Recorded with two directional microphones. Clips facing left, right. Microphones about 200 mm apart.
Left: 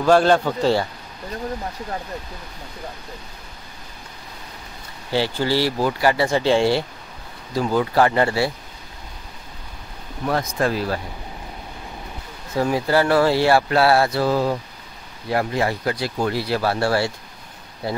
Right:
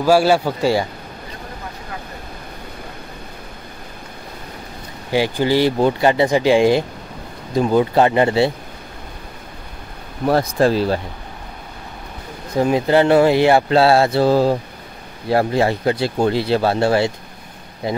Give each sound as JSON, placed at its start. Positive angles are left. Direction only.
{"t": 0.0, "sound": "speech", "side_deg": -10}
{"t": 5.1, "sound": "speech", "side_deg": -15}
{"t": 10.6, "sound": "speech", "side_deg": -30}
{"t": 12.5, "sound": "speech", "side_deg": -20}